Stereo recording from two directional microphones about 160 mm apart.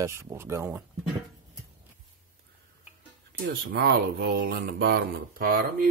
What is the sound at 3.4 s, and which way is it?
Speech, 90° right.